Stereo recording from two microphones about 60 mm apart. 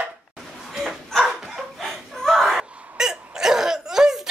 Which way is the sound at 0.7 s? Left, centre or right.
Centre.